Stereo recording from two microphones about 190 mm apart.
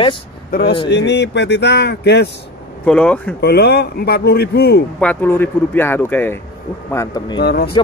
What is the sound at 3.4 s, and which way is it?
Speech, 55° left (ahead or behind).